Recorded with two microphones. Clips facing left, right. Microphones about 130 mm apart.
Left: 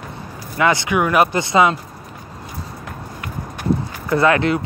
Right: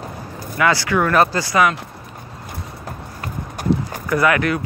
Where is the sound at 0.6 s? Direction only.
20° left (ahead or behind).